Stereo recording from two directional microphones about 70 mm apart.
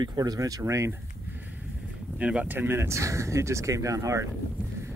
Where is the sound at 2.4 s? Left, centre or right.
Right.